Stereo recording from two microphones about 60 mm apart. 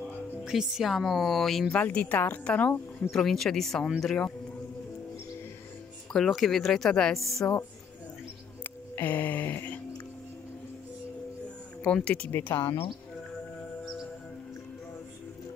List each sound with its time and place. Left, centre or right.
0.5 s speech: centre
1.7 s a woman's voice: left
3.1 s a woman's voice: centre
6.1 s speech: centre
8.9 s music: left
11.8 s a woman's voice: centre
12.3 s music: left